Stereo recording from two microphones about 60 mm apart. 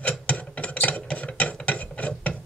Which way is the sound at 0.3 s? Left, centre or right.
Left.